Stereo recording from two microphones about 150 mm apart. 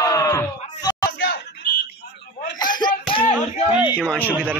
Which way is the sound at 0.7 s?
25° left (ahead or behind).